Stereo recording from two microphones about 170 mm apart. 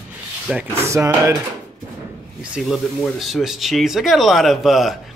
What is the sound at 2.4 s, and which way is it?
Speech, 5° right (ahead or behind).